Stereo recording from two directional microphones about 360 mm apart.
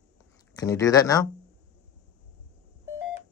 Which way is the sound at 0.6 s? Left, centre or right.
Centre.